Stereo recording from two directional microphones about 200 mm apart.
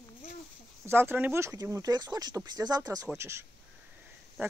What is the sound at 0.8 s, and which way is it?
Speech, 10° right (ahead or behind).